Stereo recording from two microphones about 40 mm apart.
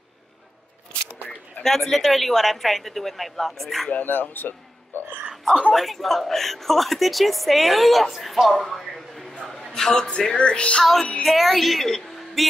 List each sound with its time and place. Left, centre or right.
1.6 s a woman's voice: centre
4.0 s speech: left
5.3 s whispering: centre
5.7 s a woman's voice: centre
8.7 s a sound: centre
9.3 s a sound: left
9.6 s speech: centre
10.8 s a woman's voice: centre